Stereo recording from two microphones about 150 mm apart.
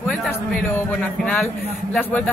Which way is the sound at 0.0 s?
10° left (ahead or behind).